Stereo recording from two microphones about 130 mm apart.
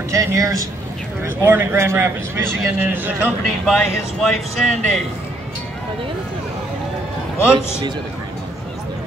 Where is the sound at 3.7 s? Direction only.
Centre (ahead or behind).